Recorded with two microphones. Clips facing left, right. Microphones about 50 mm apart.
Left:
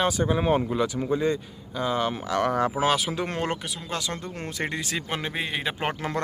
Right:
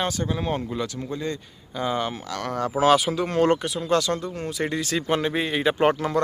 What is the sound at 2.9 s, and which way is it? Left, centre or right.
Speech, centre.